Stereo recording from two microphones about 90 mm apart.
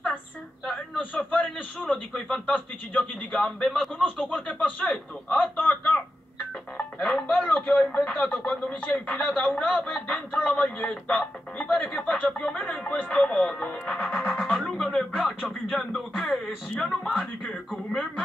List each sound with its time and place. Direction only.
1.1 s speech: 20° left (ahead or behind)
7.4 s speech: 20° left (ahead or behind)
7.9 s speech: 10° left (ahead or behind)